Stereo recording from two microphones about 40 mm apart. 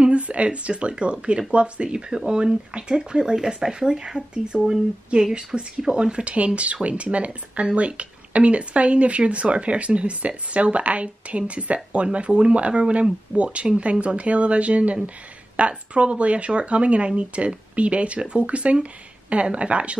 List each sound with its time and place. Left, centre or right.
0.0 s speech: right